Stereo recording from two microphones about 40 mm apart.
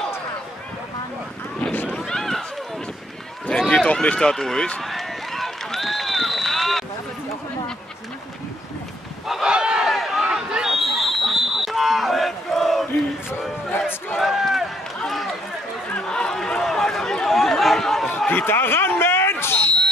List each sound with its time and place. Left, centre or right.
2.0 s run: centre
3.5 s run: centre
4.2 s speech: centre
4.8 s run: centre
9.4 s a sound: right
9.8 s a sound: centre
10.3 s a sound: centre
10.9 s crowd: centre
14.4 s run: centre
16.0 s run: centre
17.4 s chatter: centre
18.1 s a sound: left